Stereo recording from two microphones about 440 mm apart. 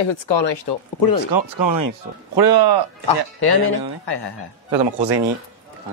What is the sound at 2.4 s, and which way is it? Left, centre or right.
Speech, right.